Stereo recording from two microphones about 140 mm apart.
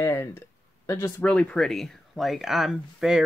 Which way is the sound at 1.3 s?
5° left (ahead or behind).